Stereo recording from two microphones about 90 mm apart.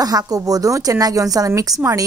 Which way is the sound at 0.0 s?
45° right (ahead or behind).